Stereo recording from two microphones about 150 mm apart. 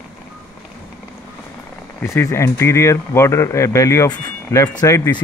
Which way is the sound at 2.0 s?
15° left (ahead or behind).